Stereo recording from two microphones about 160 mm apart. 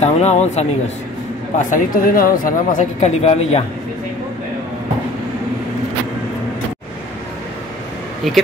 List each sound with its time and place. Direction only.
0.0 s speech: 45° left (ahead or behind)
1.6 s speech: 60° left (ahead or behind)